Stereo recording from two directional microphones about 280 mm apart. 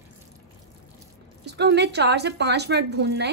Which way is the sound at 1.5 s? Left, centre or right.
Right.